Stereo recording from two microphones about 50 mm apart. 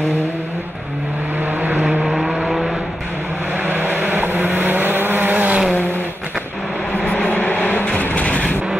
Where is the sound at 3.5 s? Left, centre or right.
Right.